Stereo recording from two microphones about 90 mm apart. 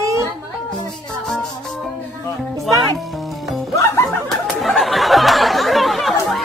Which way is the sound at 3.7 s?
30° left (ahead or behind).